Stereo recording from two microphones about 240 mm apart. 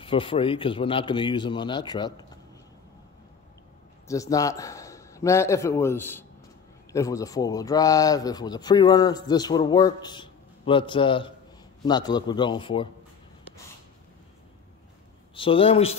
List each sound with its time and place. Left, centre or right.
0.0 s speech: left
4.1 s a man's voice: centre
15.3 s speech: left